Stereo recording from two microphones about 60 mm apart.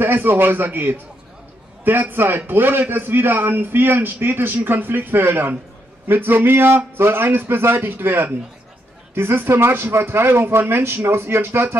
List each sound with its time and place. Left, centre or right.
0.0 s a man's voice: right